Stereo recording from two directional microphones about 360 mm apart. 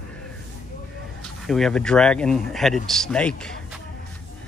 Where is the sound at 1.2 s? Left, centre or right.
Centre.